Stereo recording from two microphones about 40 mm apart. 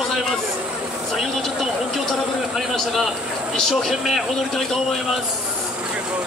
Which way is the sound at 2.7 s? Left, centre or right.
Centre.